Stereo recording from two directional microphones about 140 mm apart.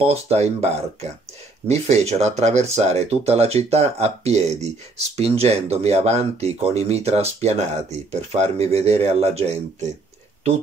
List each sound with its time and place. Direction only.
0.0 s speech: 50° right (ahead or behind)
1.7 s speech: 50° right (ahead or behind)